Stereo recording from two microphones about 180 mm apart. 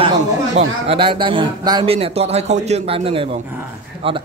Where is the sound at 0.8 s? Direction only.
30° right (ahead or behind).